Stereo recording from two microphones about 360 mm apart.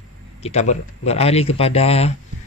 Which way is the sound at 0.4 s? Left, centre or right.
Centre.